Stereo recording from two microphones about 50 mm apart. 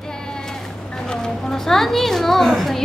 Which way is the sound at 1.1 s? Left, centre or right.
Centre.